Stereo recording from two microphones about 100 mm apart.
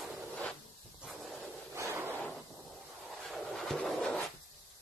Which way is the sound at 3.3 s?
5° left (ahead or behind).